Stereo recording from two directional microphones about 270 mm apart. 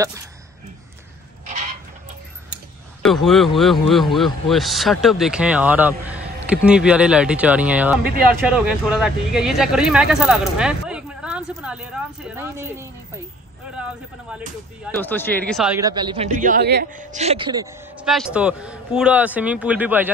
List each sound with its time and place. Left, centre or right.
3.0 s speech: centre
14.9 s speech: centre
15.8 s a man's voice: centre
18.0 s speech: centre